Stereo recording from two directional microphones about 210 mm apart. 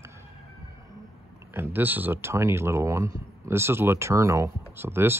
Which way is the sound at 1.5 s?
10° right (ahead or behind).